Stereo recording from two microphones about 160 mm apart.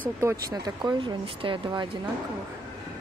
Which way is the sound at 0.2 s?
20° right (ahead or behind).